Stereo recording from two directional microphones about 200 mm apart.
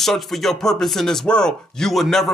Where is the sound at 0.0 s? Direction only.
Centre (ahead or behind).